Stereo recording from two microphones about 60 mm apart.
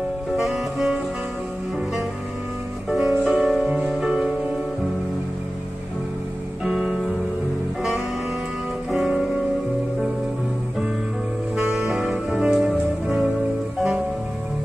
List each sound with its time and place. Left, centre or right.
0.4 s saxophone: centre
2.9 s music: centre
3.6 s music: centre
3.9 s music: centre
6.6 s music: centre
8.9 s music: centre
11.5 s music: centre